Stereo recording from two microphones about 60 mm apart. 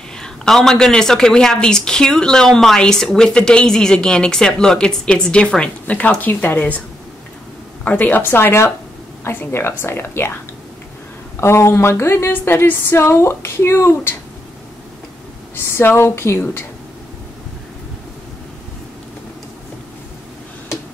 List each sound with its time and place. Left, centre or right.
0.2 s a woman's voice: centre; by 6.8 s left
7.8 s speech: left
11.3 s speech: left
12.3 s speech: left
15.5 s speech: left